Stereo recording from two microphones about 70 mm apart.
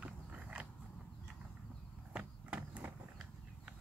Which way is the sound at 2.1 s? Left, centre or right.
Centre.